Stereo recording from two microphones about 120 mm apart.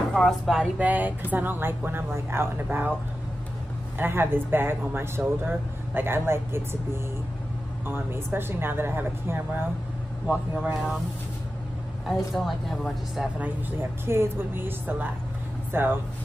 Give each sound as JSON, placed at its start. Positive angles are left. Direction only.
{"t": 0.1, "sound": "speech", "side_deg": 5}
{"t": 0.8, "sound": "speech", "side_deg": -15}
{"t": 4.0, "sound": "speech", "side_deg": -20}
{"t": 12.3, "sound": "speech", "side_deg": 0}
{"t": 13.4, "sound": "speech", "side_deg": -20}